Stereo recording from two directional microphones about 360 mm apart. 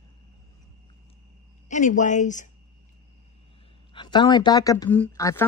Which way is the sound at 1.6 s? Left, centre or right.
Centre.